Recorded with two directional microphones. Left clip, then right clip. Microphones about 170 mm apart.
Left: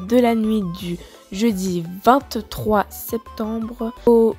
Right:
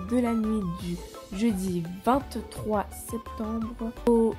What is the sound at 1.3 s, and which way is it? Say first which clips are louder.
Speech: left 8 dB; 35° left (ahead or behind).